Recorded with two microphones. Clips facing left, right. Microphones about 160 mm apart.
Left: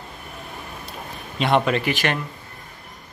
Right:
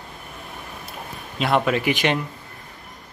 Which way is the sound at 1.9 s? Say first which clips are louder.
Right 2 dB; 20° right (ahead or behind).